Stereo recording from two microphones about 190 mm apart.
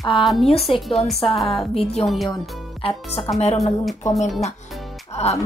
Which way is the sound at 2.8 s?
30° left (ahead or behind).